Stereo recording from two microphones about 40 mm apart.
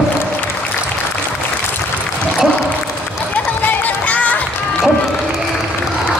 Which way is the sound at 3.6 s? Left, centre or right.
Left.